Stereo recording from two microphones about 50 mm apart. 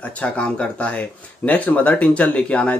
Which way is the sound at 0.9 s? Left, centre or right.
Left.